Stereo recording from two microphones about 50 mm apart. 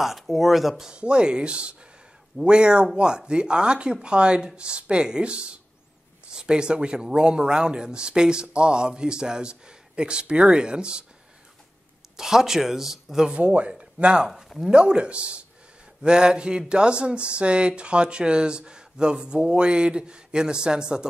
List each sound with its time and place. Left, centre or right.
0.0 s speech: centre
0.9 s speech: centre
12.2 s speech: centre
13.4 s speech: right
14.3 s speech: centre
14.7 s speech: right